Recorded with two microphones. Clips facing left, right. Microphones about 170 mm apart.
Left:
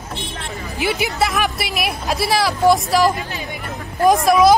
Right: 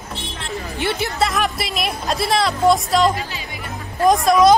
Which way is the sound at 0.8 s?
5° left (ahead or behind).